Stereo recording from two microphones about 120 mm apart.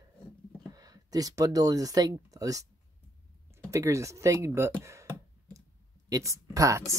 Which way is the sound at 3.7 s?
25° right (ahead or behind).